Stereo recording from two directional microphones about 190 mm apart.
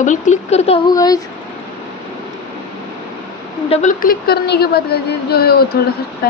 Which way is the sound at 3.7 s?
40° left (ahead or behind).